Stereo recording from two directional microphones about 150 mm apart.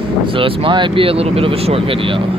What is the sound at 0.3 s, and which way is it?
Speech, 35° right (ahead or behind).